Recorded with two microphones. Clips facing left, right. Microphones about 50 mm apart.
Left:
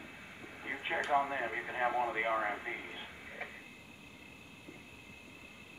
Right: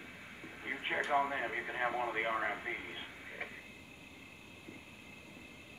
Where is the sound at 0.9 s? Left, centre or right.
Centre.